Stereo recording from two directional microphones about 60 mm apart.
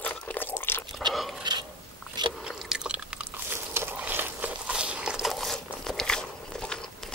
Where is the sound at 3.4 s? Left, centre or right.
Right.